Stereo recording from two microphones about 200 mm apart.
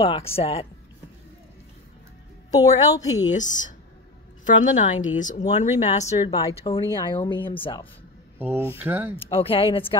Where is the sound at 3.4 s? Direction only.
40° left (ahead or behind).